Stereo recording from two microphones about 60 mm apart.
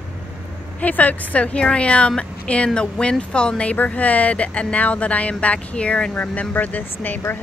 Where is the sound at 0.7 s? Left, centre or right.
Left.